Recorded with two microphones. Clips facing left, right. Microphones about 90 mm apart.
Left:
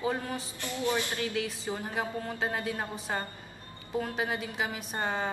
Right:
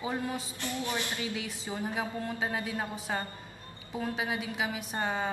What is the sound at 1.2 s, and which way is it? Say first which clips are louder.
Speech: left 4 dB; 15° right (ahead or behind).